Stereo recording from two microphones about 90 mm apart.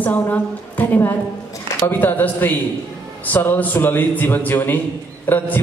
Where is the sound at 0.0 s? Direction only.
20° left (ahead or behind).